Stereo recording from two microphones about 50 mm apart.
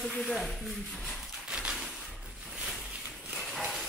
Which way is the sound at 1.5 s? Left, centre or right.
Centre.